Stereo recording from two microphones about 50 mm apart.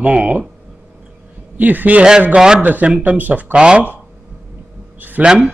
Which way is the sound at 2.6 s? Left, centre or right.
Right.